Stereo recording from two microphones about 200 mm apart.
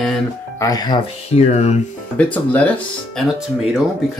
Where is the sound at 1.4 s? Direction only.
35° left (ahead or behind).